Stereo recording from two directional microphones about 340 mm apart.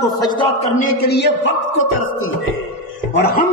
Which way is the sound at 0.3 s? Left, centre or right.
Left.